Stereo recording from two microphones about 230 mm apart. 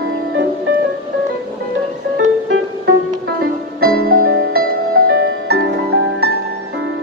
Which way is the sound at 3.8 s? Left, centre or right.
Right.